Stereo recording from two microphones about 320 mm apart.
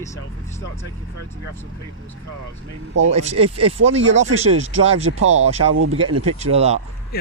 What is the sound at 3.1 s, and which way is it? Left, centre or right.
Speech, centre.